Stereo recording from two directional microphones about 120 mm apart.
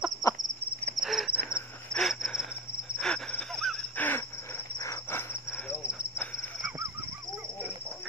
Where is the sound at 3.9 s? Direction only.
15° left (ahead or behind).